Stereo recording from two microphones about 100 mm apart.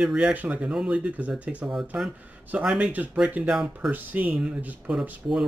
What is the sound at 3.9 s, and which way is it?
Speech, 15° right (ahead or behind).